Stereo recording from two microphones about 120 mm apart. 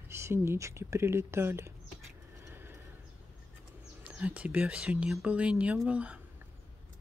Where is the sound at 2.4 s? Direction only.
20° right (ahead or behind).